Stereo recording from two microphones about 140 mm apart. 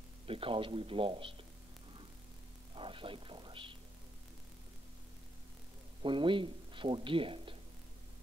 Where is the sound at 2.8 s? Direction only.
40° right (ahead or behind).